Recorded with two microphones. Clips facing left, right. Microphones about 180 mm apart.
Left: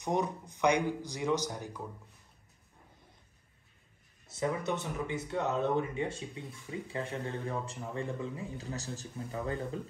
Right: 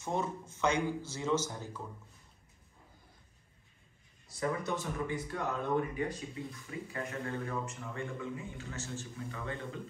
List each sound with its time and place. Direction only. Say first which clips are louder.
0.0 s speech: left 3 dB; 15° left (ahead or behind)
4.3 s speech: left 2 dB; 20° left (ahead or behind); by 9.6 s 35° left (ahead or behind)